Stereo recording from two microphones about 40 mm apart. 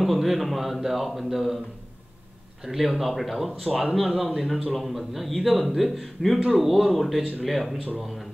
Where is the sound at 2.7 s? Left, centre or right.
Centre.